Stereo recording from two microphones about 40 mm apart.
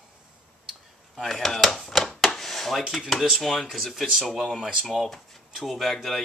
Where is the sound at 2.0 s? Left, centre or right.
Centre.